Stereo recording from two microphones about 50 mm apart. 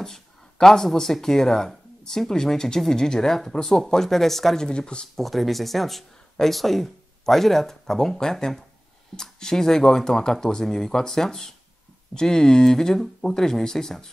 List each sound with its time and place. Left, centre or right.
0.0 s speech: centre
4.6 s speech: centre
5.1 s speech: centre